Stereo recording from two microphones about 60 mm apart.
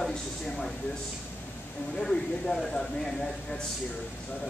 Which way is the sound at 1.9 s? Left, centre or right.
Centre.